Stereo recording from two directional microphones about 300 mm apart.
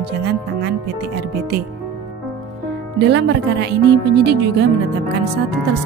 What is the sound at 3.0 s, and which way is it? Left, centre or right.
Speech, right.